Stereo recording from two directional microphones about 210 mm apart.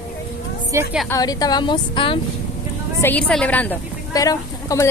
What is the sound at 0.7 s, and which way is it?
Speech, 5° right (ahead or behind).